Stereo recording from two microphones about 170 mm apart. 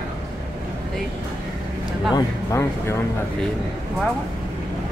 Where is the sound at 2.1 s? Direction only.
15° left (ahead or behind).